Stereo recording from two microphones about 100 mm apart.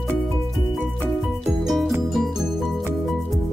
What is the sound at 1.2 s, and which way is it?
Music, centre (ahead or behind).